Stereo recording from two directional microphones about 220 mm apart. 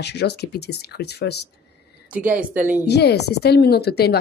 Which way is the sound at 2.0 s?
5° right (ahead or behind).